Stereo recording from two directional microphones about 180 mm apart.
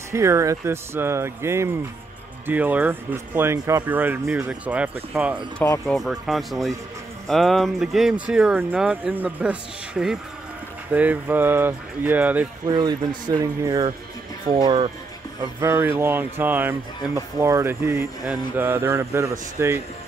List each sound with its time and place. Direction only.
0.1 s speech: 15° right (ahead or behind)
12.6 s speech: 20° right (ahead or behind)
15.6 s speech: 10° right (ahead or behind)